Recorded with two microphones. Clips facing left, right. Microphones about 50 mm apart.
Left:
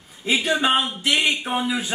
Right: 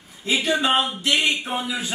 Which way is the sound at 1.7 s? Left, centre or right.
Centre.